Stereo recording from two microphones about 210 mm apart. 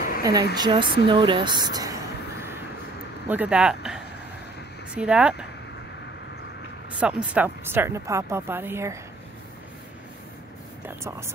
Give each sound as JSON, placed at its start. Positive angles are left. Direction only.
{"t": 0.2, "sound": "speech", "side_deg": -15}
{"t": 3.3, "sound": "speech", "side_deg": -5}
{"t": 7.0, "sound": "speech", "side_deg": -5}
{"t": 10.9, "sound": "speech", "side_deg": -10}